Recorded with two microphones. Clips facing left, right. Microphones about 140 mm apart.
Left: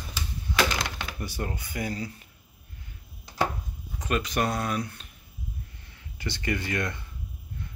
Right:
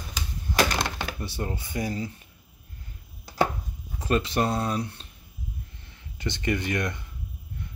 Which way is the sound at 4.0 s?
30° right (ahead or behind).